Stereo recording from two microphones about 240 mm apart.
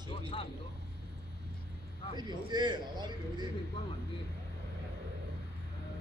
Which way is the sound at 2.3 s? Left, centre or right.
Centre.